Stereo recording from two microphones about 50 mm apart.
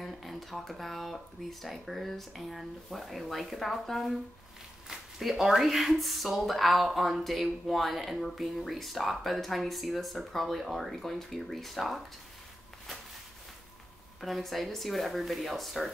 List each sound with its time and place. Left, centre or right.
0.0 s speech: centre
14.2 s speech: centre